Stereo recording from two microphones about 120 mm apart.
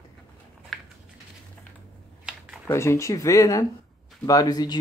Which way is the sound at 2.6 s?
25° left (ahead or behind).